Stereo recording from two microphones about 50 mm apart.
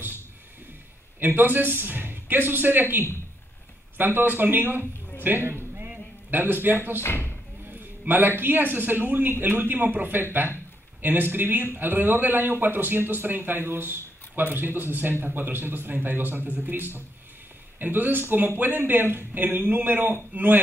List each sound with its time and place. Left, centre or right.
1.2 s a man's voice: right
5.2 s a sound: right
7.0 s speech: left
8.1 s a man's voice: right